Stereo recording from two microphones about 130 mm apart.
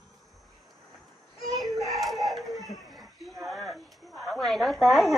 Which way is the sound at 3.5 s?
Centre (ahead or behind).